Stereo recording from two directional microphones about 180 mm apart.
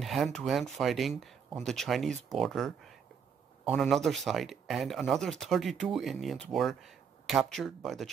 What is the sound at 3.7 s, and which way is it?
Speech, centre (ahead or behind).